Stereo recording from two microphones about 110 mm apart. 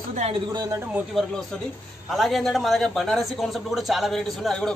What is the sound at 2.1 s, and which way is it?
Speech, centre (ahead or behind).